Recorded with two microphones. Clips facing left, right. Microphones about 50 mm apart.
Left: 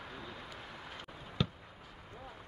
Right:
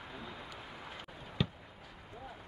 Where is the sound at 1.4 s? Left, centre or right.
Centre.